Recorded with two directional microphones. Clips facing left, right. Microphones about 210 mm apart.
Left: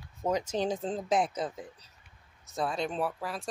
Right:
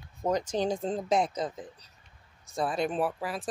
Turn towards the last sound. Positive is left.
turn(degrees=-5)  # may be behind; listen again after turning